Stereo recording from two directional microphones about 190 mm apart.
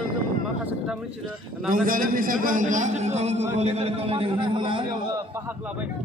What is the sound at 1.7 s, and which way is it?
A man's voice, 45° right (ahead or behind).